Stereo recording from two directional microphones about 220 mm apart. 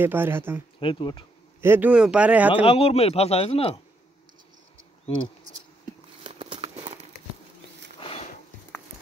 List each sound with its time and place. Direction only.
0.0 s a man's voice: 10° right (ahead or behind)
0.7 s speech: 20° left (ahead or behind)
1.6 s a man's voice: 10° right (ahead or behind)
2.6 s speech: 25° left (ahead or behind)
6.2 s horse: 25° right (ahead or behind)
8.0 s a sound: 25° left (ahead or behind)